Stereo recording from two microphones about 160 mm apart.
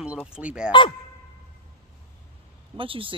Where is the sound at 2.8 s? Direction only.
35° right (ahead or behind).